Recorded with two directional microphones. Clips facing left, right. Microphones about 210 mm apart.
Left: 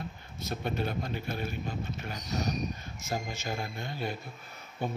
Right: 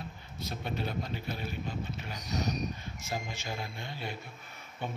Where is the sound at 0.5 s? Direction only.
50° left (ahead or behind).